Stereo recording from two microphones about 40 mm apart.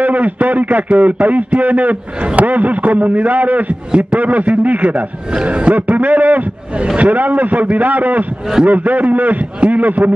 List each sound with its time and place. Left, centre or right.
0.0 s a man's voice: right
4.9 s a man's voice: right
5.9 s a man's voice: right